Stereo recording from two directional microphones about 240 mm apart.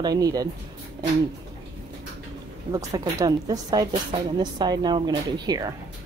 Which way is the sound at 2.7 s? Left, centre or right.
Centre.